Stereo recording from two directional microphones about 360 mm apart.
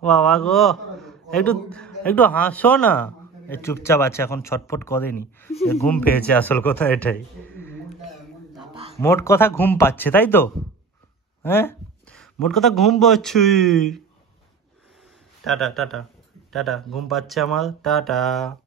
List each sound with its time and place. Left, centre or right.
0.0 s a man's voice: centre
5.7 s a sound: centre
8.9 s speech: centre
15.4 s a man's voice: centre